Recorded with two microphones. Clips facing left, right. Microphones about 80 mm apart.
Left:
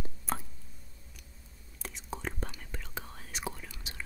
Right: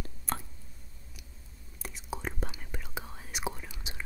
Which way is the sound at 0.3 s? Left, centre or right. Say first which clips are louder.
Left 1 dB; centre.